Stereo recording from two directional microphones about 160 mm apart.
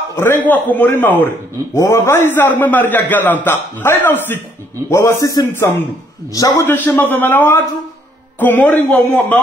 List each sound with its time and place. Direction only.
0.1 s a man's voice: 15° left (ahead or behind)